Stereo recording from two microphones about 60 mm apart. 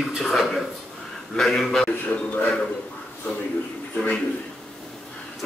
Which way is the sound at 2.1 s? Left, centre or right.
Left.